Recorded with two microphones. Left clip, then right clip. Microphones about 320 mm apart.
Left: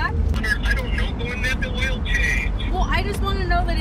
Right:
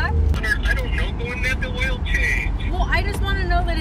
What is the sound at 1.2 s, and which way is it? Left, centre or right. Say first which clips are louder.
Vehicle: right 1 dB; centre.